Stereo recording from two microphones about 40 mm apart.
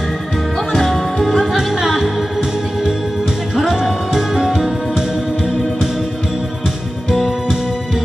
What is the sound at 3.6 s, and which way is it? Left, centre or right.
Music, centre.